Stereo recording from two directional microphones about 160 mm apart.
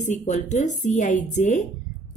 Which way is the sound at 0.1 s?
50° left (ahead or behind).